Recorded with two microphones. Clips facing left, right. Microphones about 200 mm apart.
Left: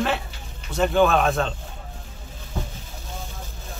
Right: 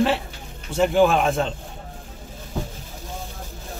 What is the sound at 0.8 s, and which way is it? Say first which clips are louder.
Speech: right 1 dB; 15° right (ahead or behind).